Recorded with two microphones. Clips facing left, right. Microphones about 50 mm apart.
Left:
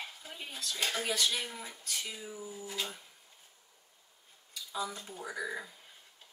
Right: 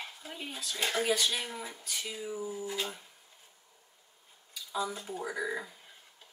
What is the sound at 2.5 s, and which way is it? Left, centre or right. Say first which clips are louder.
Speech: right 5 dB; centre.